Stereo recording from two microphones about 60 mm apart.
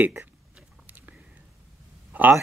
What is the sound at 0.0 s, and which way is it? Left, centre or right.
Speech, right.